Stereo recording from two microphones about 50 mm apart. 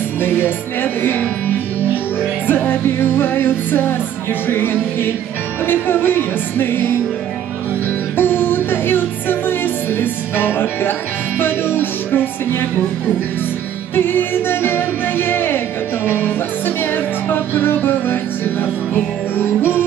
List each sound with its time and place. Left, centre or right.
2.4 s music: left
8.2 s music: left
13.9 s music: left